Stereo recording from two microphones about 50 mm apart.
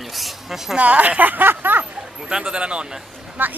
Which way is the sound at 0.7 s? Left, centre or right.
Right.